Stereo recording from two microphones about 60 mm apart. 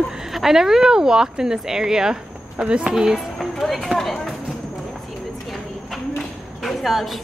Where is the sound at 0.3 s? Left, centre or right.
Centre.